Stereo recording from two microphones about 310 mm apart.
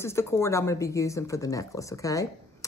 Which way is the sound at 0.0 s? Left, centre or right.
Centre.